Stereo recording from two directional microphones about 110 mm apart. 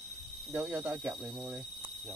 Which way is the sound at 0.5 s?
15° right (ahead or behind).